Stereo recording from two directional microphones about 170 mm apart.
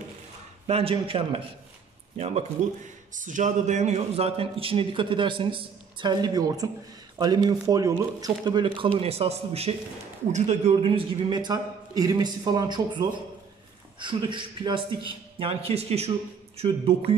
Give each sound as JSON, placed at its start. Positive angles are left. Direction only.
{"t": 0.7, "sound": "a man's voice", "side_deg": -35}